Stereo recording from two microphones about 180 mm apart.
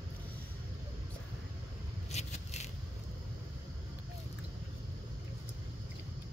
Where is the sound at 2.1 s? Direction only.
40° left (ahead or behind).